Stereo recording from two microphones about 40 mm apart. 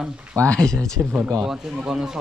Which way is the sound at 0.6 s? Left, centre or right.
Centre.